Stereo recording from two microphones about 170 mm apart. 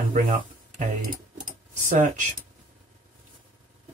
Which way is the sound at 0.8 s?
50° right (ahead or behind).